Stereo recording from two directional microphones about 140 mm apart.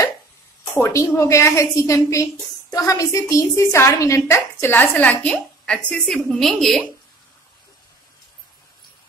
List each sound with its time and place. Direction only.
0.7 s a woman's voice: 20° left (ahead or behind); by 6.8 s centre (ahead or behind)